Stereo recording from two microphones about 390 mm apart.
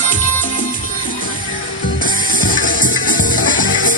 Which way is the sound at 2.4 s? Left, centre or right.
Left.